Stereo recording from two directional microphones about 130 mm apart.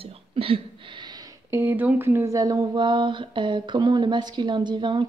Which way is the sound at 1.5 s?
20° right (ahead or behind).